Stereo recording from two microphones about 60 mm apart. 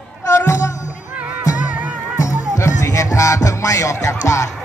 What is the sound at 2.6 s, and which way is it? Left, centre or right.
Music, left.